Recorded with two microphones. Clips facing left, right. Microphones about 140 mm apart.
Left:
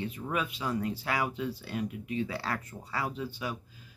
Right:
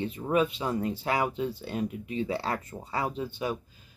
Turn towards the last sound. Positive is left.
turn(degrees=-25)  # may be behind; listen again after turning